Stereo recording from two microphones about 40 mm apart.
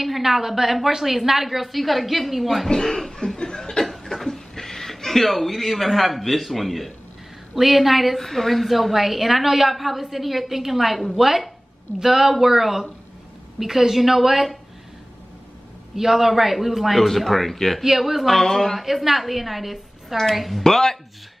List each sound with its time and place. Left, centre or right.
0.0 s a woman's voice: centre
2.7 s cough: centre
3.9 s a sound: centre
7.5 s a woman's voice: centre
16.0 s a woman's voice: centre
17.8 s a woman's voice: centre
20.6 s speech: centre